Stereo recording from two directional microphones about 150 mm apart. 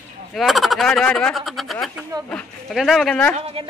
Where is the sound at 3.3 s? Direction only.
40° right (ahead or behind).